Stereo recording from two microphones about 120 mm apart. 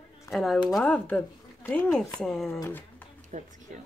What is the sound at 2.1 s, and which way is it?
Speech, 5° left (ahead or behind).